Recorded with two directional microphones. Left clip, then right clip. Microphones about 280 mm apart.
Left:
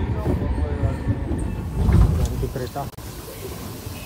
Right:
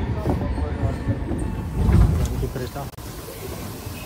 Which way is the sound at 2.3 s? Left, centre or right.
Left.